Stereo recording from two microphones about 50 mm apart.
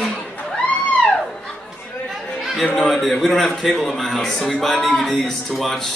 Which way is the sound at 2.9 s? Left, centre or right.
Centre.